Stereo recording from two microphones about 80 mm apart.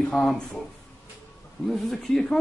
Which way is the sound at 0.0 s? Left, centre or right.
Centre.